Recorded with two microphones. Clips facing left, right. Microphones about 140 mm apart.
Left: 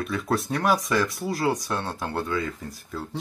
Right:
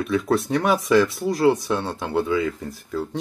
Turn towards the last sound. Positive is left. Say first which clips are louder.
# right 6 dB
turn(degrees=-5)  # may be behind; listen again after turning